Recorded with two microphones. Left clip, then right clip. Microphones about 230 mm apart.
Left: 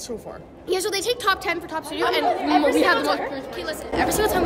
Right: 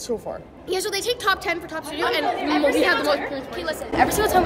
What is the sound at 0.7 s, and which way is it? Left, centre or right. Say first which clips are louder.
A woman's voice: left 1 dB; left.